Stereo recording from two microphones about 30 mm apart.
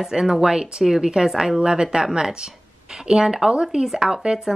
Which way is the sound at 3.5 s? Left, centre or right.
Right.